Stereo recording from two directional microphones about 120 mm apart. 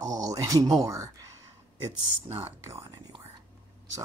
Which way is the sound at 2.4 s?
30° right (ahead or behind).